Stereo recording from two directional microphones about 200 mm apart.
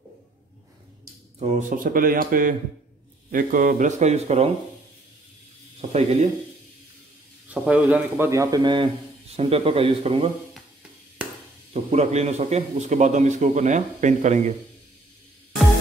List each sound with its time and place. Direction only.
1.4 s a man's voice: 40° right (ahead or behind)
5.8 s speech: 35° right (ahead or behind)
7.4 s speech: 5° right (ahead or behind); by 10.3 s 30° right (ahead or behind)
11.7 s a man's voice: 35° right (ahead or behind)